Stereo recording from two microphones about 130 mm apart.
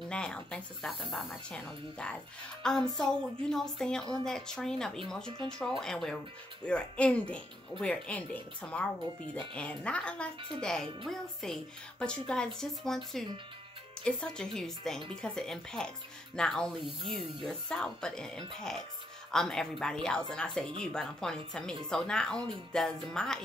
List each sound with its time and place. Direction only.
0.1 s a woman's voice: 5° left (ahead or behind)